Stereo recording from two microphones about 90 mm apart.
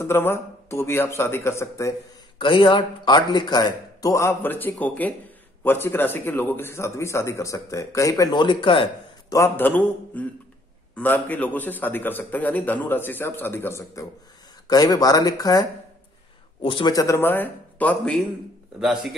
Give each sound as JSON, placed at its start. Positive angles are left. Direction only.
{"t": 0.0, "sound": "a man's voice", "side_deg": 30}
{"t": 2.3, "sound": "a man's voice", "side_deg": 60}
{"t": 8.4, "sound": "speech", "side_deg": 65}
{"t": 9.6, "sound": "a man's voice", "side_deg": 20}
{"t": 14.7, "sound": "speech", "side_deg": 50}
{"t": 16.6, "sound": "speech", "side_deg": 70}
{"t": 16.9, "sound": "speech", "side_deg": 40}
{"t": 17.2, "sound": "speech", "side_deg": 20}
{"t": 18.8, "sound": "speech", "side_deg": -5}